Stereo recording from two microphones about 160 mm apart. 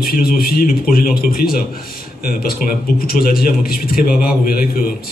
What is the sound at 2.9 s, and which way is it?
Speech, 65° left (ahead or behind).